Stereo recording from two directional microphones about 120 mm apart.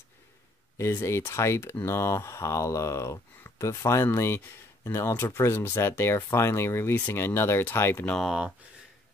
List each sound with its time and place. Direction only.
0.7 s speech: 25° left (ahead or behind)
8.2 s speech: centre (ahead or behind)